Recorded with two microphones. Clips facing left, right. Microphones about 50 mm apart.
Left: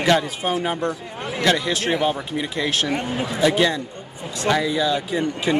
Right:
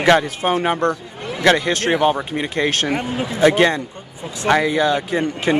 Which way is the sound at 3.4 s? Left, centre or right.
Right.